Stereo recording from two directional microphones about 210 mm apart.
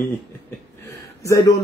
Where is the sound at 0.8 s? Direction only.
15° left (ahead or behind).